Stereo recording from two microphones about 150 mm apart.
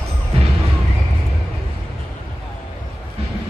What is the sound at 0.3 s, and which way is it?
Music, 40° right (ahead or behind).